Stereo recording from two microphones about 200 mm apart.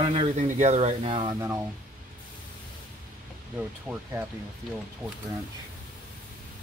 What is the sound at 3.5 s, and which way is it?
Speech, 10° right (ahead or behind).